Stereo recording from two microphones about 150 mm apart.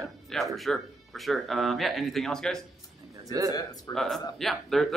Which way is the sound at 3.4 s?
25° left (ahead or behind).